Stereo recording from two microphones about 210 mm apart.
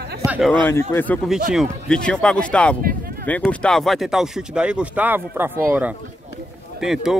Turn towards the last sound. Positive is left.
turn(degrees=0)  # may be behind; listen again after turning